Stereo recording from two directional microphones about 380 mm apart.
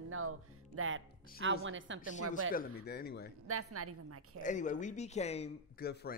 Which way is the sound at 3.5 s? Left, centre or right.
Right.